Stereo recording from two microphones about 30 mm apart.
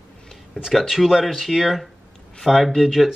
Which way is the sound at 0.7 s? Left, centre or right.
Centre.